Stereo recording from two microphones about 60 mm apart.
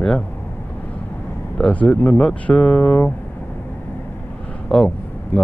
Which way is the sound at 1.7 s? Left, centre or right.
Left.